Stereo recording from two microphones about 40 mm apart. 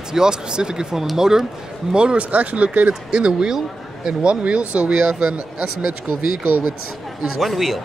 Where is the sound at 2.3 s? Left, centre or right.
Right.